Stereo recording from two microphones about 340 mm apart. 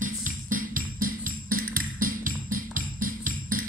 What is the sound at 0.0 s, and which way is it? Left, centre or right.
Music, right.